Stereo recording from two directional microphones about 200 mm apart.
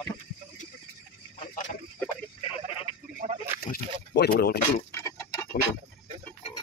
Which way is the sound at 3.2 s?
35° right (ahead or behind).